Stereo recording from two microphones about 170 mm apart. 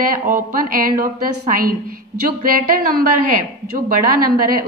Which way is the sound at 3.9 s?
55° right (ahead or behind).